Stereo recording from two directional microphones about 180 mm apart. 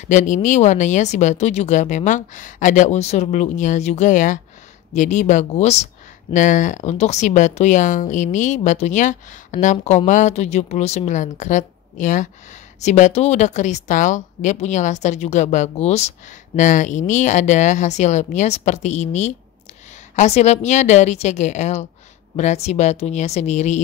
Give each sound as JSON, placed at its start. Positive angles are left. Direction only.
{"t": 0.0, "sound": "speech", "side_deg": 45}